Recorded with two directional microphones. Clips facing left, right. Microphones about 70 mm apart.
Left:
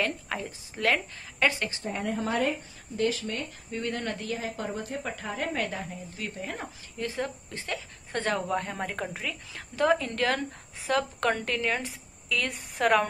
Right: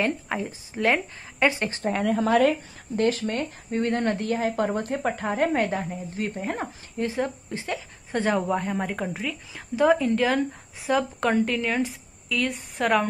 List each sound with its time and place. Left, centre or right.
0.5 s speech: right
1.9 s speech: right
3.0 s speech: right
7.2 s a woman's voice: centre